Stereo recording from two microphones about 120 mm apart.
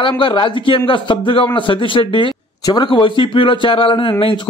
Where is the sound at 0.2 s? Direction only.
45° left (ahead or behind).